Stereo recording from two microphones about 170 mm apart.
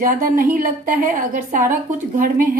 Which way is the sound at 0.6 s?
50° right (ahead or behind).